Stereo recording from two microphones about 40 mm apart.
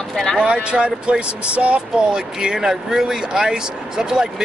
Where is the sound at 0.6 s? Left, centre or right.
Right.